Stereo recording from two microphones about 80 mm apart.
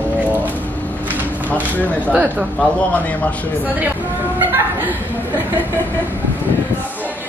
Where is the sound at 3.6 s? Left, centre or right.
Right.